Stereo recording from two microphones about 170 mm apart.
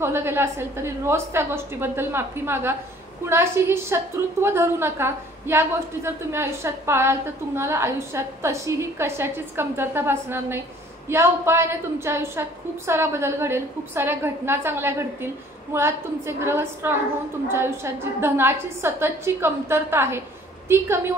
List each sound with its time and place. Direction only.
0.0 s a woman's voice: 15° right (ahead or behind)